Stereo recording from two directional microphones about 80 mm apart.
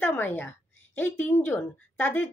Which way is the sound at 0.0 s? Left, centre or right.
Left.